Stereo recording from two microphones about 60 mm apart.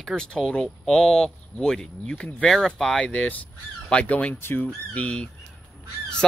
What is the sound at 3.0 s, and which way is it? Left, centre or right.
Speech, left.